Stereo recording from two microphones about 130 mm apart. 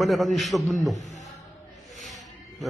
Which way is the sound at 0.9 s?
65° left (ahead or behind).